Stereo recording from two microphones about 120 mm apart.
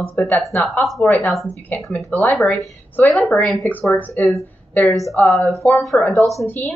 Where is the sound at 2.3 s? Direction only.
Centre (ahead or behind).